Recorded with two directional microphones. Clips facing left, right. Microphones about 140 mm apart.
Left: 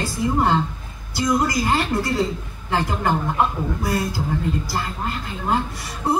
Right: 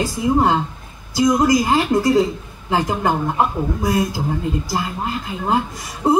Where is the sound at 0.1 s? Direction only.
15° right (ahead or behind).